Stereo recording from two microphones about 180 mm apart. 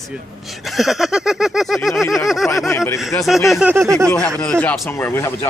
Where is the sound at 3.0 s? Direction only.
Centre (ahead or behind).